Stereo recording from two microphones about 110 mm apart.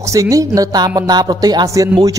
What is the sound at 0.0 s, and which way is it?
A man's voice, 30° right (ahead or behind).